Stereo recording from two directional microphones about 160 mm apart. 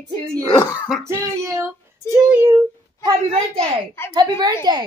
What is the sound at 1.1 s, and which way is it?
Child singing, 20° right (ahead or behind).